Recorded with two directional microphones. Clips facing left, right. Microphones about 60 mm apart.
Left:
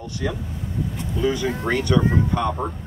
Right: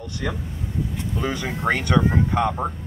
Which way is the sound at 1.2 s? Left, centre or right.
Right.